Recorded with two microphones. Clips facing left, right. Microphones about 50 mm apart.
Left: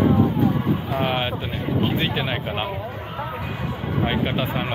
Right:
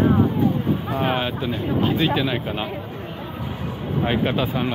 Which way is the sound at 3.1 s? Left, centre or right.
Left.